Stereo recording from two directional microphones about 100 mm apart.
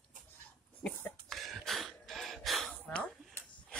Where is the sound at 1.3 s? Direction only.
Centre (ahead or behind).